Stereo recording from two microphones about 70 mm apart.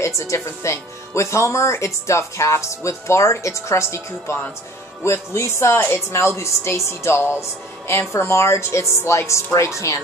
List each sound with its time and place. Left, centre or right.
0.0 s speech: left